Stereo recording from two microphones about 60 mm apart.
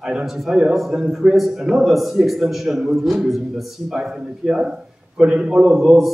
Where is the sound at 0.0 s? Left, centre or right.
Centre.